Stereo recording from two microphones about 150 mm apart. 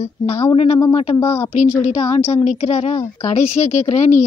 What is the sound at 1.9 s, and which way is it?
A woman's voice, 45° left (ahead or behind).